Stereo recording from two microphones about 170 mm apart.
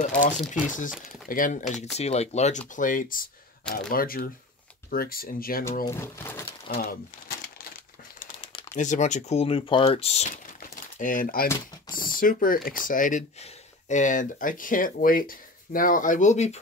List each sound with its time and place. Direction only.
0.0 s speech: 50° left (ahead or behind)
2.0 s speech: 40° left (ahead or behind); by 5.7 s 60° left (ahead or behind)
5.9 s speech: 15° left (ahead or behind)
6.8 s crumpling: 60° left (ahead or behind)
8.7 s speech: 45° left (ahead or behind)
10.3 s a sound: 55° left (ahead or behind)
11.9 s speech: 55° left (ahead or behind)